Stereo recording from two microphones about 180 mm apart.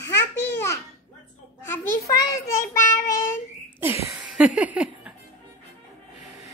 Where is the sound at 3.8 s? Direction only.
10° right (ahead or behind).